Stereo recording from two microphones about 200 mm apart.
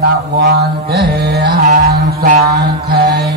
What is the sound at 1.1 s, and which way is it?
Music, 55° right (ahead or behind).